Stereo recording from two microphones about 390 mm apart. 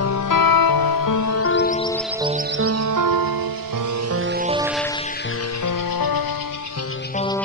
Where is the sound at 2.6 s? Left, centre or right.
Right.